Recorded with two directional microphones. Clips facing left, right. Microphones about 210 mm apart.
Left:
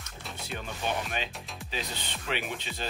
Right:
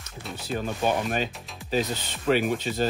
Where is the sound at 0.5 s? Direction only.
40° right (ahead or behind).